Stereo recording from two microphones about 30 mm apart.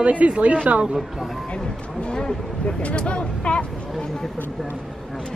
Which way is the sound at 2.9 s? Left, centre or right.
Left.